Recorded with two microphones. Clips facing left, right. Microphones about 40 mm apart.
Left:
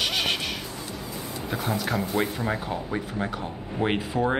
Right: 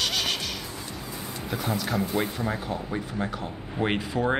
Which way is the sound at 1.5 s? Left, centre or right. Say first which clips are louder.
Left 1 dB; centre.